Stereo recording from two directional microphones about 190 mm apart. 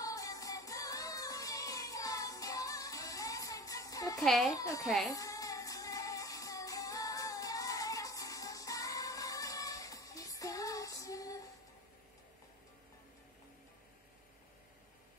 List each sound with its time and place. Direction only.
0.0 s music: 20° left (ahead or behind)
4.2 s a child's voice: centre (ahead or behind)
4.6 s a child's voice: 20° left (ahead or behind)
4.8 s a child's voice: centre (ahead or behind)
5.1 s music: 20° left (ahead or behind)